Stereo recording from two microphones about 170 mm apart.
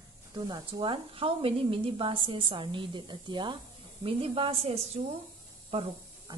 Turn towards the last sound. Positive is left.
turn(degrees=-35)  # may be behind; listen again after turning